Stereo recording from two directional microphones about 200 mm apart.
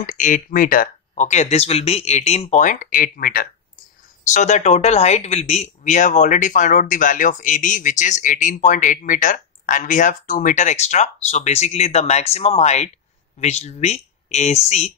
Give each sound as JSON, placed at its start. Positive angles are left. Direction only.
{"t": 0.0, "sound": "speech", "side_deg": 40}